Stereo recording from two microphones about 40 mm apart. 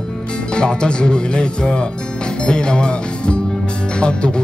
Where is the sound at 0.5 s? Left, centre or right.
Left.